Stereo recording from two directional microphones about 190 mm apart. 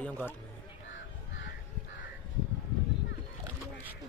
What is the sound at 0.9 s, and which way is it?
Crow, 80° left.